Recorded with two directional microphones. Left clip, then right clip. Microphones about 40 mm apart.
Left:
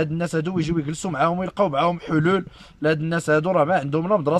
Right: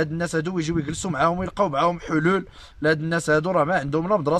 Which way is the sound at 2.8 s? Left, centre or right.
Left.